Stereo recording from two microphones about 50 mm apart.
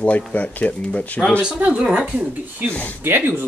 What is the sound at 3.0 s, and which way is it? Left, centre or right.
Speech, right.